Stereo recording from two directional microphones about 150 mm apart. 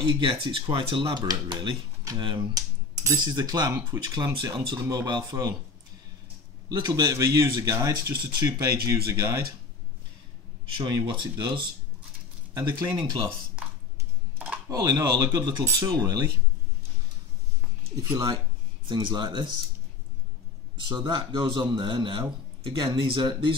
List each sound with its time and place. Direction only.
0.0 s speech: 35° right (ahead or behind)
6.7 s speech: 30° right (ahead or behind)
8.1 s speech: 90° right
10.8 s speech: 30° right (ahead or behind)
12.9 s speech: 30° right (ahead or behind)
14.7 s speech: 20° right (ahead or behind)
17.9 s speech: 20° right (ahead or behind)
20.9 s speech: 30° right (ahead or behind)